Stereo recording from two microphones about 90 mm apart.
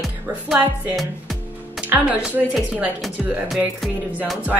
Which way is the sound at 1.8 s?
15° right (ahead or behind).